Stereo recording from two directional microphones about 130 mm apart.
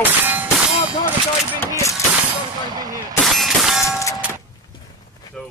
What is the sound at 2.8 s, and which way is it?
Speech, 30° right (ahead or behind).